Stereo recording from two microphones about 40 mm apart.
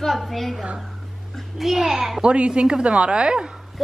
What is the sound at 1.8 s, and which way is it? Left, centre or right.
Speech, centre.